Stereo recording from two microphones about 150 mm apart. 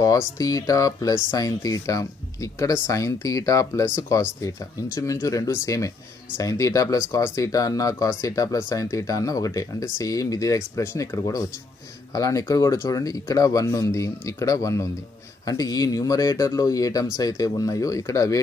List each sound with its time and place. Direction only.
0.0 s speech: 25° left (ahead or behind)